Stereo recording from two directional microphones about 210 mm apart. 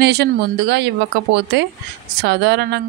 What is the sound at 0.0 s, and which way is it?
Speech, 50° right (ahead or behind).